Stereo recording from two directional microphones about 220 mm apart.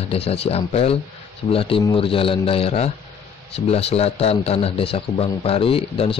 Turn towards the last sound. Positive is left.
turn(degrees=25)  # may be behind; listen again after turning